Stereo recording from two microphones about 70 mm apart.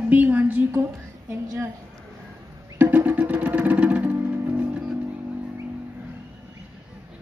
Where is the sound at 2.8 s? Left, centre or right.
Right.